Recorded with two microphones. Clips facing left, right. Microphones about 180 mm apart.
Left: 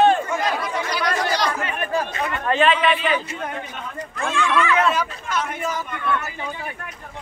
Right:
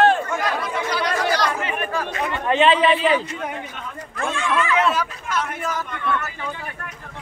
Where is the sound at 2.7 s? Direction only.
30° right (ahead or behind).